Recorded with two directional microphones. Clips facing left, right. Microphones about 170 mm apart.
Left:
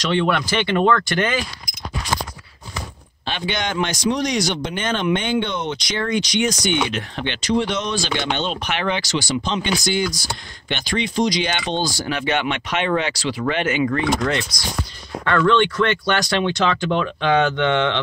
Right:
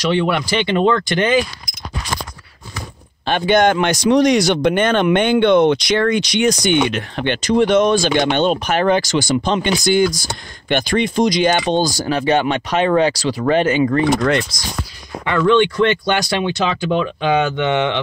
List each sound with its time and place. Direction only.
0.1 s speech: 10° right (ahead or behind)
3.3 s speech: 50° right (ahead or behind)
14.5 s speech: 25° right (ahead or behind)
15.2 s speech: 15° right (ahead or behind)